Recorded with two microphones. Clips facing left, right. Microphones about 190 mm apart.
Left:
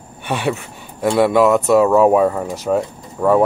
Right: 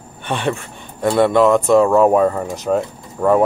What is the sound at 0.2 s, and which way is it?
Speech, 10° left (ahead or behind).